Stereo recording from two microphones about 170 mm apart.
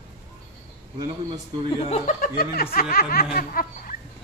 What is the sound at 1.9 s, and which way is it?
Speech, 50° left (ahead or behind).